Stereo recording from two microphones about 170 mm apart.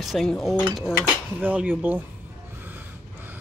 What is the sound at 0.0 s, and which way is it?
Speech, centre (ahead or behind).